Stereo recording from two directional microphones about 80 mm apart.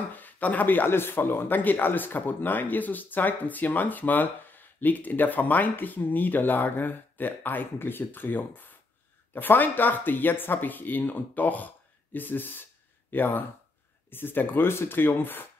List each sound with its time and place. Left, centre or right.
0.1 s speech: left